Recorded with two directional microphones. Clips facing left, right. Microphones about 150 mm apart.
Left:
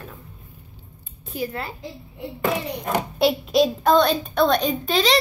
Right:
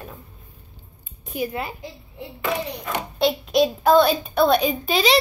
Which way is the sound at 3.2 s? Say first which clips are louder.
Even; 5° left (ahead or behind).